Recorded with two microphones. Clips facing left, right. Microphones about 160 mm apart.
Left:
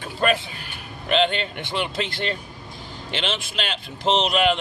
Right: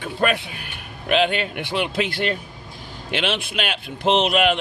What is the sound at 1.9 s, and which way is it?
Speech, 55° right (ahead or behind).